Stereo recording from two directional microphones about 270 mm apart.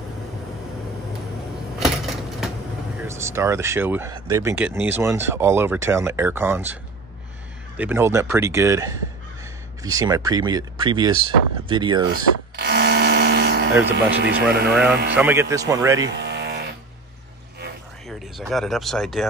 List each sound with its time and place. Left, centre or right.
3.0 s speech: centre
12.1 s a sound: right
13.8 s speech: right
15.1 s speech: centre
16.0 s a sound: right
18.5 s speech: centre